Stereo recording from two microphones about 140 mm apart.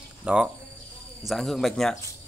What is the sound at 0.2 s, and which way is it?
Speech, 5° right (ahead or behind).